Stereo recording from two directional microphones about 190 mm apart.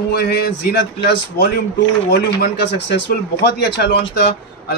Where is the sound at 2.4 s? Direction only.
65° left (ahead or behind).